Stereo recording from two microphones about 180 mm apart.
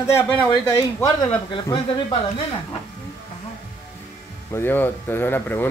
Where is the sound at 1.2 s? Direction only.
25° left (ahead or behind).